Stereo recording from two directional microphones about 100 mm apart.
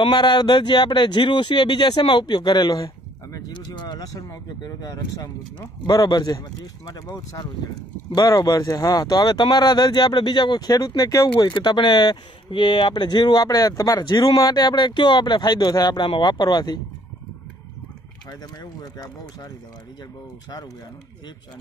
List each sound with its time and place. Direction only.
0.0 s speech: 45° left (ahead or behind)
11.4 s speech: 50° left (ahead or behind)
18.6 s speech: 40° left (ahead or behind)